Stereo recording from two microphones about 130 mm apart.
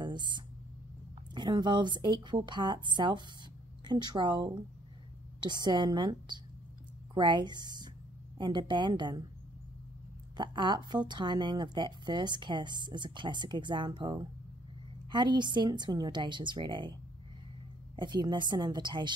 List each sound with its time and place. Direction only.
0.0 s a sound: 35° right (ahead or behind)
1.3 s a woman's voice: 35° right (ahead or behind)
10.3 s a woman's voice: 35° right (ahead or behind)
17.9 s a woman's voice: 35° right (ahead or behind)